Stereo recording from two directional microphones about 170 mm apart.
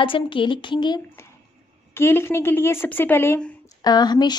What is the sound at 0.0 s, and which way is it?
A woman's voice, 30° left (ahead or behind).